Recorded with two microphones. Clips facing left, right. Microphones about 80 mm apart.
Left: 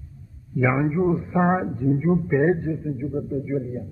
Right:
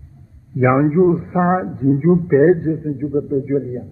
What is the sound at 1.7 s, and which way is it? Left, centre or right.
A man's voice, right.